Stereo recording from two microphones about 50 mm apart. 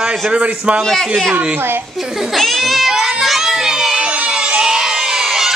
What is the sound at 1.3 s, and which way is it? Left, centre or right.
Speech, right.